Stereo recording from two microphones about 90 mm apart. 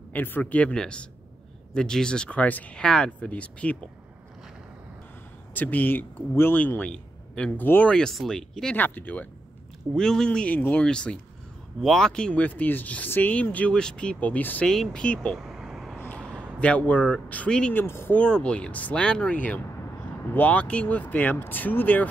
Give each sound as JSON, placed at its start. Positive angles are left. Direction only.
{"t": 0.1, "sound": "speech", "side_deg": 20}
{"t": 5.5, "sound": "a man's voice", "side_deg": 20}
{"t": 7.6, "sound": "a man's voice", "side_deg": 25}
{"t": 7.9, "sound": "speech", "side_deg": 5}
{"t": 8.7, "sound": "a man's voice", "side_deg": 20}
{"t": 9.9, "sound": "speech", "side_deg": 5}
{"t": 14.7, "sound": "speech", "side_deg": 5}
{"t": 15.3, "sound": "vehicle", "side_deg": -5}
{"t": 16.5, "sound": "speech", "side_deg": 15}
{"t": 17.7, "sound": "a man's voice", "side_deg": 25}
{"t": 18.1, "sound": "a man's voice", "side_deg": 10}